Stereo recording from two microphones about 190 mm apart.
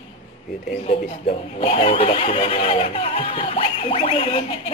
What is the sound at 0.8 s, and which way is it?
A man's voice, 30° left (ahead or behind).